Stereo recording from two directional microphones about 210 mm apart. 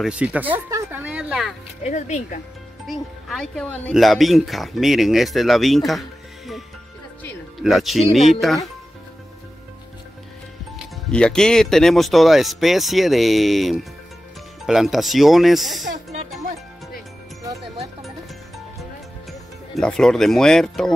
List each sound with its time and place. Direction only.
0.0 s a woman's voice: 5° right (ahead or behind)
1.9 s speech: 35° left (ahead or behind)
2.9 s speech: centre (ahead or behind)
7.6 s speech: centre (ahead or behind)
11.1 s speech: 5° left (ahead or behind)
19.7 s speech: centre (ahead or behind)